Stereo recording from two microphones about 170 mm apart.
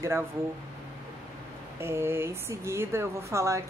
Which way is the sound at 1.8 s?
15° right (ahead or behind).